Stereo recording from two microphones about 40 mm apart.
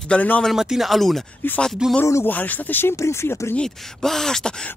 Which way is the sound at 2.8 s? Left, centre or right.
Left.